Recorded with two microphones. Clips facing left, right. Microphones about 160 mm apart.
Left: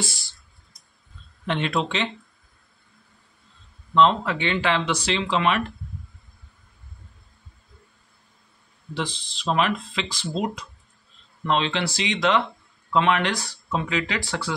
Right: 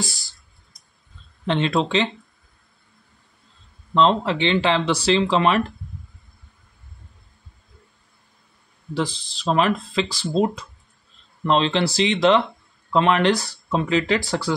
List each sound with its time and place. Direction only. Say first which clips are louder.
1.4 s speech: right 4 dB; 30° right (ahead or behind)
3.9 s speech: right 1 dB; 30° right (ahead or behind)
8.9 s speech: right 5 dB; 40° right (ahead or behind)